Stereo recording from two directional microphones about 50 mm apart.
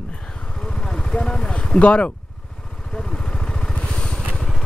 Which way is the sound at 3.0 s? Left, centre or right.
Centre.